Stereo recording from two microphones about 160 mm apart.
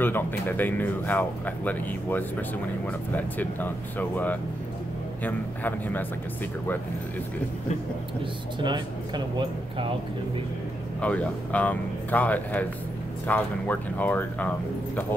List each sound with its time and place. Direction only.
0.0 s speech: 10° left (ahead or behind)
8.5 s speech: 30° right (ahead or behind)
11.0 s speech: 10° left (ahead or behind)